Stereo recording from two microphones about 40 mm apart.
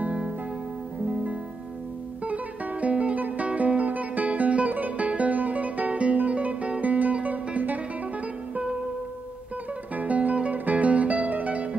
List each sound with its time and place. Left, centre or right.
2.2 s music: right
9.9 s music: right